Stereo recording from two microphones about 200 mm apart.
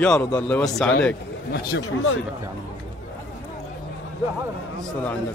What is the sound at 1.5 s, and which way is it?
Speech, 65° left (ahead or behind).